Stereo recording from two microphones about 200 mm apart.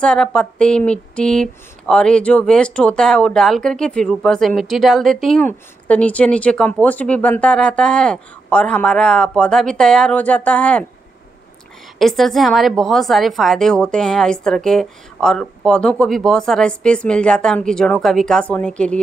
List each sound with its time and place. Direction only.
0.0 s speech: 5° left (ahead or behind)
12.0 s speech: centre (ahead or behind)